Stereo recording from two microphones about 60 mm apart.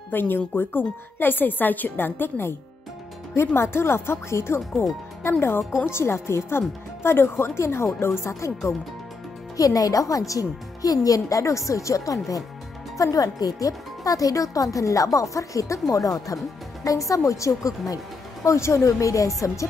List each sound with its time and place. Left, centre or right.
0.1 s speech: left
9.6 s speech: left